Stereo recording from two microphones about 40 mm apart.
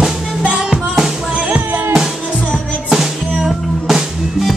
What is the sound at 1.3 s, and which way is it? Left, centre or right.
Music, right.